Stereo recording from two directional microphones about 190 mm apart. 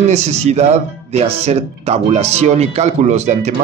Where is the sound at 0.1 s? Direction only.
35° right (ahead or behind).